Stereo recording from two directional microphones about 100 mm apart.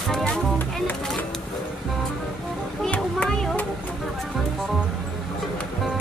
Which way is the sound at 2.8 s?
10° left (ahead or behind).